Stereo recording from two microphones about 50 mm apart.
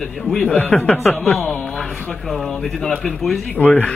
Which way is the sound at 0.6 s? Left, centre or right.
Left.